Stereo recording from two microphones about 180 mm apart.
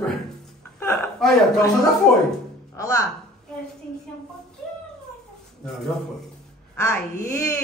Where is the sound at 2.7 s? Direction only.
15° left (ahead or behind).